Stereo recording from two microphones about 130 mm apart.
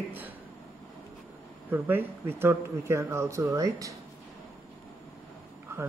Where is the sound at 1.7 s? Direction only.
15° right (ahead or behind).